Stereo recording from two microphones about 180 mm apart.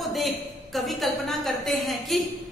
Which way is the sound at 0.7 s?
Centre (ahead or behind).